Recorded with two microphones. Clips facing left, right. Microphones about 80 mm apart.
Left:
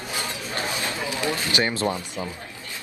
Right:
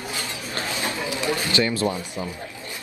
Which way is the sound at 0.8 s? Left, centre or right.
Right.